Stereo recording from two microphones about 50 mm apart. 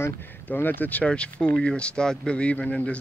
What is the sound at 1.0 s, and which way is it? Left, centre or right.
Speech, left.